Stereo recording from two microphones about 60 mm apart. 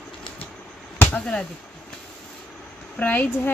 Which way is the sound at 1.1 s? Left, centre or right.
Centre.